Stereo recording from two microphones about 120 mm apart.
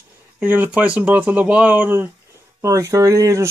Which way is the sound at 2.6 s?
25° right (ahead or behind).